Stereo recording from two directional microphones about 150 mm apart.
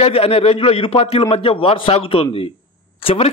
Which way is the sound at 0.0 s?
40° left (ahead or behind).